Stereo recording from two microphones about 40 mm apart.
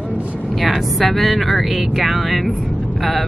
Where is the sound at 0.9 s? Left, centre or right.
Centre.